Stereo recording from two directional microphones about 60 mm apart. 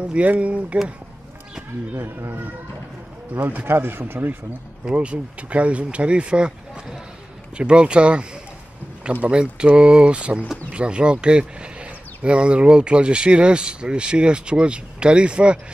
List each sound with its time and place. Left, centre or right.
0.0 s speech: right
2.0 s speech: right
4.8 s speech: centre